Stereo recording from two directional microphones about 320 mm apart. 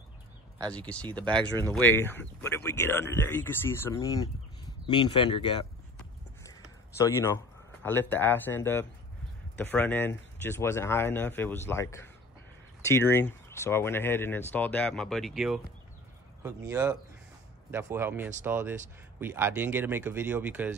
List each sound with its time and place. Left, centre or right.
0.7 s speech: centre
5.9 s a sound: centre
7.8 s speech: centre